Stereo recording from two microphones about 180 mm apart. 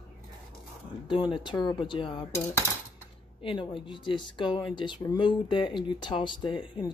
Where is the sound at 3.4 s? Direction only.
30° left (ahead or behind).